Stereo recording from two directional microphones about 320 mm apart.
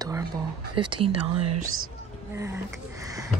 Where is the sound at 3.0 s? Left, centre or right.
Centre.